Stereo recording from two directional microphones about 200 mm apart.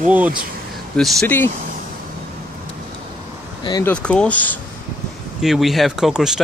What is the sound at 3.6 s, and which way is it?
Speech, 20° left (ahead or behind).